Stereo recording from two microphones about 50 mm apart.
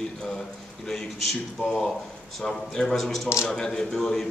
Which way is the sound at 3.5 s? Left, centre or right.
Centre.